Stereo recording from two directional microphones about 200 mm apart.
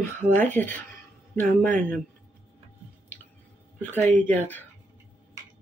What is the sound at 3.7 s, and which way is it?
Speech, 10° left (ahead or behind).